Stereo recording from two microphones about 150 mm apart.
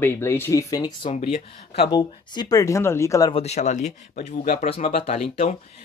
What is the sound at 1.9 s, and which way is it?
Speech, 25° left (ahead or behind).